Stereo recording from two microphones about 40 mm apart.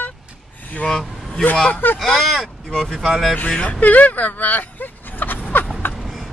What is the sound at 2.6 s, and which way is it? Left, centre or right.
Speech, centre.